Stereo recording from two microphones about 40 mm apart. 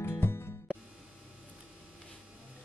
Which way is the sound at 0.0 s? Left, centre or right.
Left.